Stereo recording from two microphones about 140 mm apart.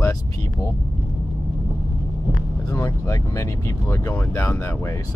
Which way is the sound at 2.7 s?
20° left (ahead or behind).